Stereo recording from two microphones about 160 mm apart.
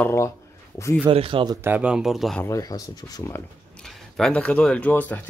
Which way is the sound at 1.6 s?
10° right (ahead or behind).